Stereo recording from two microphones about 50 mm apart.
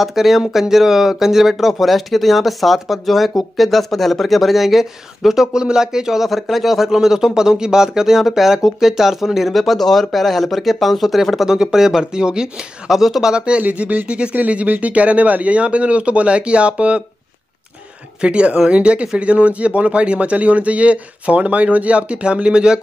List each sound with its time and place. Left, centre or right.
0.0 s speech: centre
13.6 s speech: right
18.2 s speech: right